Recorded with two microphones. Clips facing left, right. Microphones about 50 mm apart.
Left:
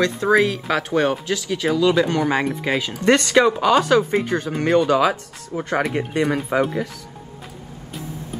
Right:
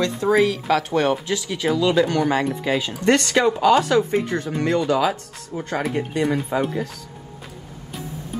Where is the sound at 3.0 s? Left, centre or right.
Left.